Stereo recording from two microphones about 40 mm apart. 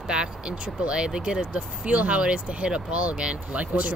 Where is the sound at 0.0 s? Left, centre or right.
Right.